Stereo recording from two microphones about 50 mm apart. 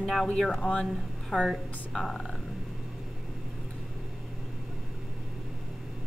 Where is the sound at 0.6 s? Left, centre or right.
Left.